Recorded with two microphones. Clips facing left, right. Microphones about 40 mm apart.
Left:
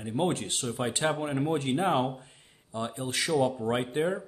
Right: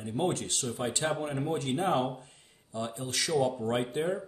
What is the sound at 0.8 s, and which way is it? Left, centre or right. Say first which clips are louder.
Speech: left 3 dB; left.